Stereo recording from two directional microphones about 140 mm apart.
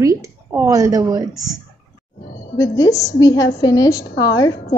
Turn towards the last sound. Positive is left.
turn(degrees=25)  # may be behind; listen again after turning